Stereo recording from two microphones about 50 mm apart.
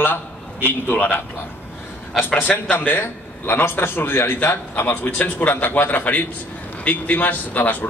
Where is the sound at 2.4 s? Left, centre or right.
Left.